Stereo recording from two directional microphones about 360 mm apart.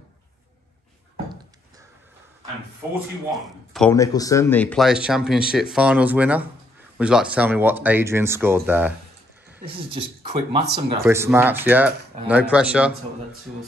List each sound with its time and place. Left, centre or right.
3.7 s speech: centre